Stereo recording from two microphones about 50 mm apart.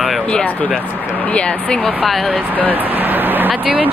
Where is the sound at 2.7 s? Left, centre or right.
Right.